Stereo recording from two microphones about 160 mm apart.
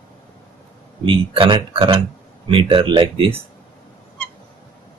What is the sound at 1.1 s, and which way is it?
Speech, 35° right (ahead or behind).